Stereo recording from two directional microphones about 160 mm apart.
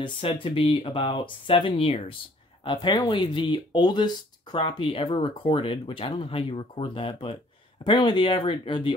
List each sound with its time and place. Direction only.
0.0 s speech: 35° left (ahead or behind)